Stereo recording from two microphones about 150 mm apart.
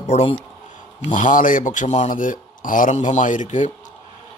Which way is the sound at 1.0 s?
55° left (ahead or behind).